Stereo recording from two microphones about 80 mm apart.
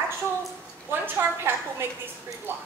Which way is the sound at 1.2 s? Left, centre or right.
Right.